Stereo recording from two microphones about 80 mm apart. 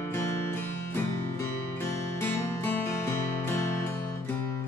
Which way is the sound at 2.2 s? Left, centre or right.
Left.